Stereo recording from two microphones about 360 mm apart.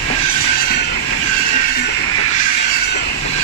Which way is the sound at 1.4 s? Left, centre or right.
Centre.